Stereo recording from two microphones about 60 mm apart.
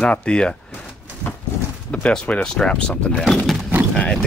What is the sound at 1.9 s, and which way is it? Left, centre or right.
Speech, centre.